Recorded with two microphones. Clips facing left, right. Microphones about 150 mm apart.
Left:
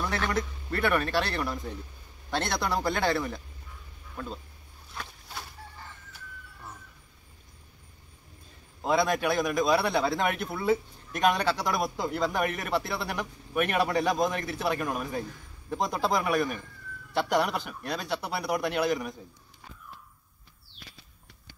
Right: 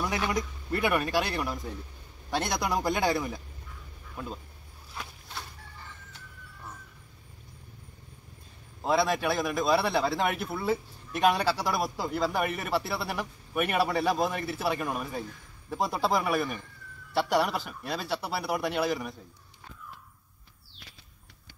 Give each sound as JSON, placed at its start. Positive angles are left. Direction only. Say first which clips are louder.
{"t": 0.0, "sound": "speech", "louder": "even", "side_deg": -10}
{"t": 8.8, "sound": "a man's voice", "louder": "left 1 dB", "side_deg": 0}